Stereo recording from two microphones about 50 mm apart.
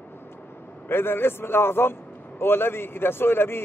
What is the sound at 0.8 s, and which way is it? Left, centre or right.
A man's voice, left.